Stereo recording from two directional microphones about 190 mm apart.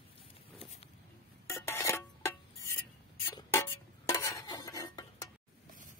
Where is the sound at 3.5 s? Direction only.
15° left (ahead or behind).